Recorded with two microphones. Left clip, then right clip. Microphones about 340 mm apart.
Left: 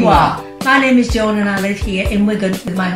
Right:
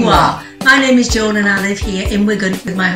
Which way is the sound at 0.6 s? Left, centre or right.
Centre.